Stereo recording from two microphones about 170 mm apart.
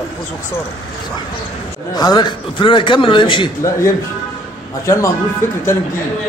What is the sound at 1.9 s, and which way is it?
A man's voice, 25° left (ahead or behind).